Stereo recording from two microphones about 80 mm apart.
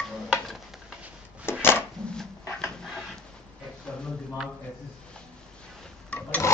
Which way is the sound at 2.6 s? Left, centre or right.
Centre.